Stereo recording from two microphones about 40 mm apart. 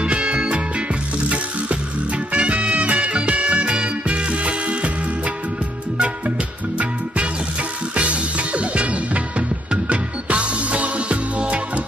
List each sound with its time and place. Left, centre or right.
0.0 s music: right
2.3 s music: right
7.9 s music: right